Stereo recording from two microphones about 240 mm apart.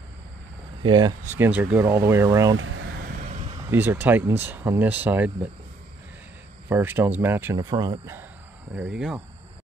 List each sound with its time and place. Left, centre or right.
0.8 s speech: centre
2.5 s vehicle: right
3.7 s speech: centre
6.7 s speech: centre